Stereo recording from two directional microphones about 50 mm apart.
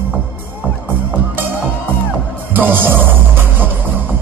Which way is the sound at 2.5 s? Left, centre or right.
Right.